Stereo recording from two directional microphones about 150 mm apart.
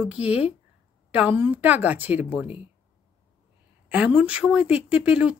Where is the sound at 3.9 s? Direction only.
10° right (ahead or behind).